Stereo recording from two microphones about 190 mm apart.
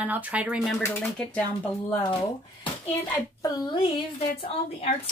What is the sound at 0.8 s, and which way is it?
Speech, 10° left (ahead or behind).